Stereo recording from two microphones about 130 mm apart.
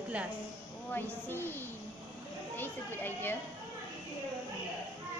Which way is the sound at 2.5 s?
15° left (ahead or behind).